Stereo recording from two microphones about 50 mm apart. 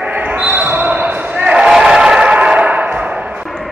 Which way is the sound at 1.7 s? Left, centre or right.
Centre.